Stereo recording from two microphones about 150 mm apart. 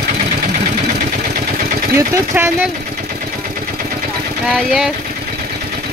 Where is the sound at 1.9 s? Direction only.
15° right (ahead or behind).